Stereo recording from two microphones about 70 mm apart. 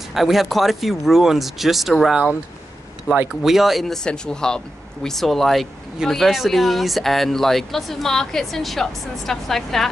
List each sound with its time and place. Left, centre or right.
0.1 s speech: centre
3.1 s speech: left
3.4 s speech: centre